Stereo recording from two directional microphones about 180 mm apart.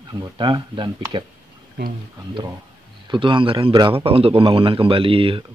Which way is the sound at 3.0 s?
30° right (ahead or behind).